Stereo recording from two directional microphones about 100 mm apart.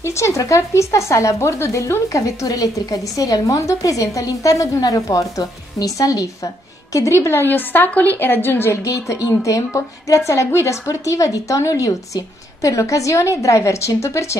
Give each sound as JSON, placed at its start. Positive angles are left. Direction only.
{"t": 0.0, "sound": "speech", "side_deg": 30}